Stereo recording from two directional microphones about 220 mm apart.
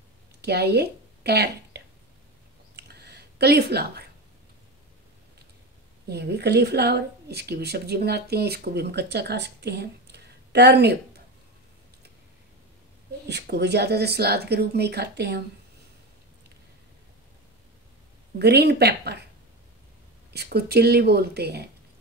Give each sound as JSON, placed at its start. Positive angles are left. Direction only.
{"t": 0.4, "sound": "speech", "side_deg": -50}
{"t": 2.7, "sound": "a sound", "side_deg": -50}
{"t": 6.0, "sound": "a woman's voice", "side_deg": -50}
{"t": 13.3, "sound": "a woman's voice", "side_deg": -50}
{"t": 18.4, "sound": "a woman's voice", "side_deg": -50}
{"t": 20.3, "sound": "a woman's voice", "side_deg": -45}